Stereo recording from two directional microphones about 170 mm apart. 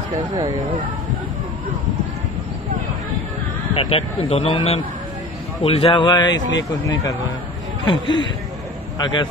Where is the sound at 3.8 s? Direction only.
35° left (ahead or behind).